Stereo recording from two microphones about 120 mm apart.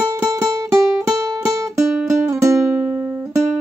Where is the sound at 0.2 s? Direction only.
30° right (ahead or behind).